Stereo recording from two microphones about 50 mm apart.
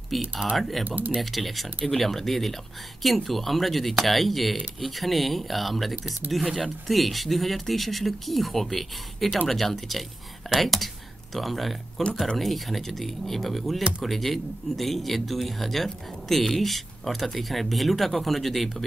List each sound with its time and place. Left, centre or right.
0.1 s speech: centre
0.8 s speech: right
1.2 s speech: centre